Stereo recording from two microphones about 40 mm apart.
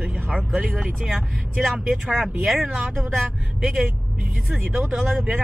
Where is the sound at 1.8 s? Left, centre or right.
Centre.